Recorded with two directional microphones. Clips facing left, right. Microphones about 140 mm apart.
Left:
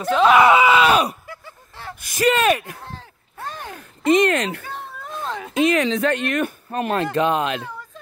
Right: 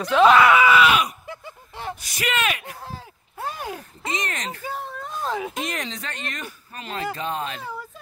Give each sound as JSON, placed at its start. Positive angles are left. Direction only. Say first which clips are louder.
{"t": 0.1, "sound": "speech", "louder": "even", "side_deg": 0}
{"t": 0.4, "sound": "speech", "louder": "left 2 dB", "side_deg": 25}
{"t": 0.8, "sound": "speech", "louder": "left 3 dB", "side_deg": 35}
{"t": 1.2, "sound": "a sound", "louder": "right 2 dB", "side_deg": -20}
{"t": 2.0, "sound": "speech", "louder": "left 9 dB", "side_deg": 45}
{"t": 2.8, "sound": "a sound", "louder": "even", "side_deg": -10}
{"t": 4.1, "sound": "speech", "louder": "left 14 dB", "side_deg": 65}
{"t": 4.6, "sound": "a sound", "louder": "right 2 dB", "side_deg": -5}
{"t": 5.8, "sound": "speech", "louder": "left 13 dB", "side_deg": 65}
{"t": 7.2, "sound": "speech", "louder": "left 9 dB", "side_deg": 75}